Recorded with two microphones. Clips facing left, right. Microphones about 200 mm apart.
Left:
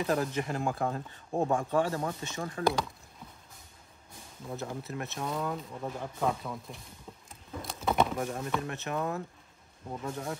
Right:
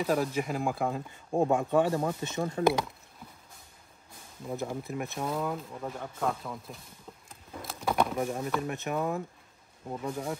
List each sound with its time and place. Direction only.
0.0 s speech: 10° right (ahead or behind)
4.8 s speech: 15° right (ahead or behind)
5.2 s speech: 5° right (ahead or behind)
7.2 s bee: centre (ahead or behind)
8.5 s speech: 5° right (ahead or behind)